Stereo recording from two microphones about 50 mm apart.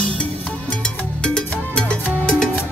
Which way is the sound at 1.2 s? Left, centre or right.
Centre.